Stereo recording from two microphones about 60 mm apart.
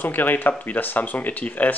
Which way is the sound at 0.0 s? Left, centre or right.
Left.